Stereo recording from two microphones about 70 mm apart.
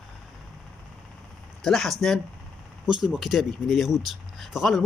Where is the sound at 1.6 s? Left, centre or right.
Centre.